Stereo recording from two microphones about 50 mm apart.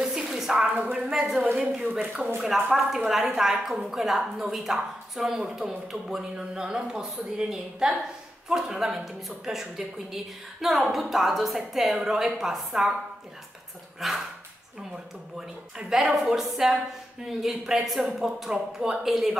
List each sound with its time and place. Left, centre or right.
0.0 s a sound: centre
0.9 s a woman's voice: centre
2.0 s speech: right
2.4 s a woman's voice: centre
13.9 s speech: centre
15.3 s a woman's voice: centre